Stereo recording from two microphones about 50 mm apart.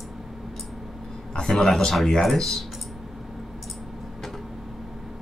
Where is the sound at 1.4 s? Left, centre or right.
Centre.